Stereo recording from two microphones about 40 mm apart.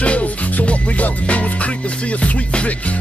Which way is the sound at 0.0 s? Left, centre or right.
Left.